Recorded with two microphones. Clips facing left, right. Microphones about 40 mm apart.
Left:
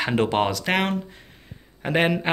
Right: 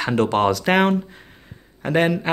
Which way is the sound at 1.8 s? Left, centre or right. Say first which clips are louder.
Right 2 dB; centre.